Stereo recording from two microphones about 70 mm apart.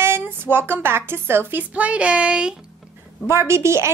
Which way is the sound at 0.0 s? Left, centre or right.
Right.